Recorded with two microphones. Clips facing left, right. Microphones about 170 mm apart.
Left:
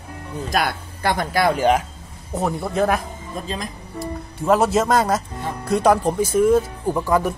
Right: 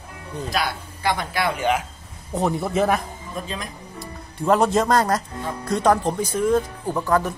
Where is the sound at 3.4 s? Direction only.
35° left (ahead or behind).